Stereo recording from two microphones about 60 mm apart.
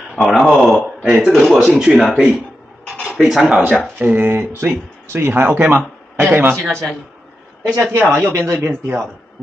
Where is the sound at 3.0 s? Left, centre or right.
Centre.